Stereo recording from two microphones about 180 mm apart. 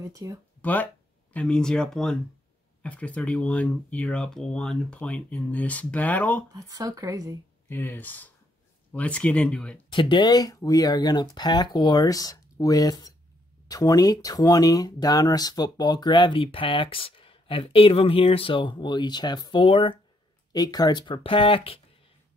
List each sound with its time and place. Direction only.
0.0 s speech: 20° right (ahead or behind)
0.6 s speech: 10° left (ahead or behind)
6.5 s speech: 20° right (ahead or behind)
7.6 s speech: 10° left (ahead or behind)
9.8 s speech: 25° left (ahead or behind)